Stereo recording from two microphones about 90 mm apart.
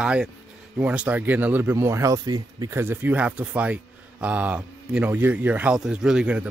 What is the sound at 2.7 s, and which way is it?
Speech, 25° right (ahead or behind).